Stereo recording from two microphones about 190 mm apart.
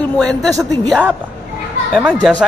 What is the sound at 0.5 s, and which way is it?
Speech, 20° right (ahead or behind).